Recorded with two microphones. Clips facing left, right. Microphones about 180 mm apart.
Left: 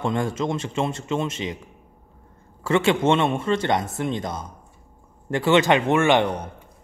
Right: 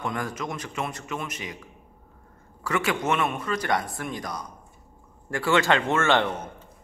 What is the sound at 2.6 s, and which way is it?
A man's voice, 25° left (ahead or behind).